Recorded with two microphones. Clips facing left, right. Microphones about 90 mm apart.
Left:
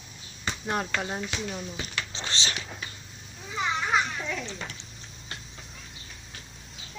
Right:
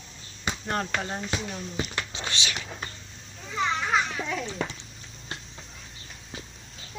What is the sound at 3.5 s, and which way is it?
Children playing, 5° left (ahead or behind).